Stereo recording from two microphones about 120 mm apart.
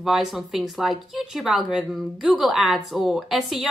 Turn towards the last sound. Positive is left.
turn(degrees=0)  # may be behind; listen again after turning